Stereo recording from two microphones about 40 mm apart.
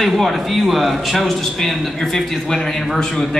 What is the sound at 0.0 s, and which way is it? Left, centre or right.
A man's voice, centre.